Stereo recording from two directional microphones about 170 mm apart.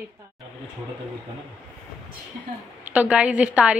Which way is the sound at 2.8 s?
10° right (ahead or behind).